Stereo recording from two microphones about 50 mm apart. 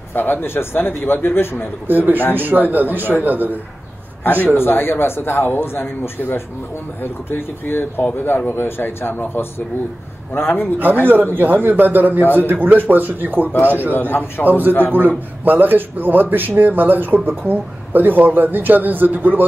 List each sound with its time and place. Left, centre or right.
0.1 s speech: left
1.9 s speech: right
4.2 s a man's voice: left
11.3 s speech: right
13.5 s speech: left
14.4 s speech: right